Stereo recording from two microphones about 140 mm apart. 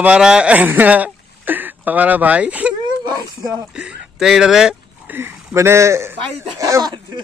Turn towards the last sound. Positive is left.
turn(degrees=-30)  # may be behind; listen again after turning